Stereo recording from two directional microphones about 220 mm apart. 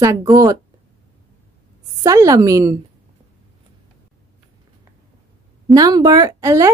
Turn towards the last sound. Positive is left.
turn(degrees=-15)  # may be behind; listen again after turning